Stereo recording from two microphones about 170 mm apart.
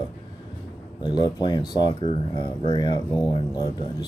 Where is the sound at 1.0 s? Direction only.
25° left (ahead or behind).